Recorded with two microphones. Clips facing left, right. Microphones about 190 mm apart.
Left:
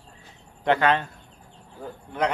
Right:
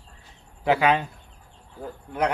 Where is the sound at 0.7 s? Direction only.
10° right (ahead or behind).